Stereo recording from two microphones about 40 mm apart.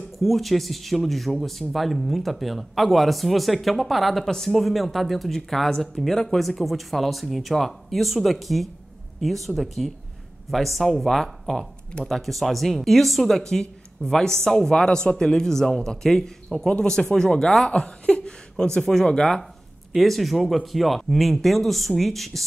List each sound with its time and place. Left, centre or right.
0.2 s speech: centre
17.6 s speech: left
20.0 s speech: centre